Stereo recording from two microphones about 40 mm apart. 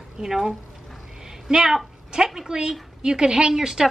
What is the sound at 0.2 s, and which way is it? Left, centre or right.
A woman's voice, centre.